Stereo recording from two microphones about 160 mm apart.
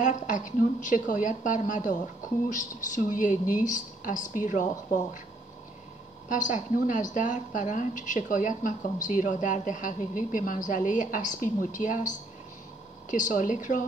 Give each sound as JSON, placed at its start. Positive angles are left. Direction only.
{"t": 0.0, "sound": "a woman's voice", "side_deg": 55}
{"t": 6.2, "sound": "a woman's voice", "side_deg": 55}
{"t": 13.1, "sound": "a woman's voice", "side_deg": 55}